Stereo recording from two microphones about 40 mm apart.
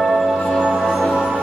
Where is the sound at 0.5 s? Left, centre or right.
Right.